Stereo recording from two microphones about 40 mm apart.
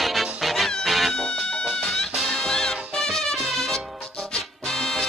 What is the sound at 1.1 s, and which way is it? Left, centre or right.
Music, centre.